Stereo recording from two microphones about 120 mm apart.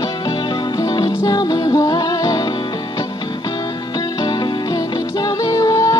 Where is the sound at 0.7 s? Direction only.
30° left (ahead or behind).